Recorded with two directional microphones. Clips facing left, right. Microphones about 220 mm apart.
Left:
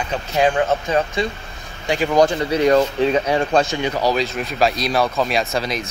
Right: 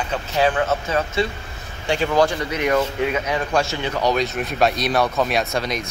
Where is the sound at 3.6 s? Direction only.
15° left (ahead or behind).